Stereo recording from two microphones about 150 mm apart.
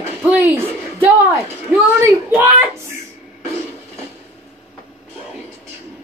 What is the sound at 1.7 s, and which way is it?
Speech, 10° right (ahead or behind).